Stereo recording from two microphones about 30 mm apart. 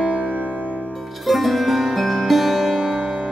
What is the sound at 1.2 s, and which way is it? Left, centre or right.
Music, centre.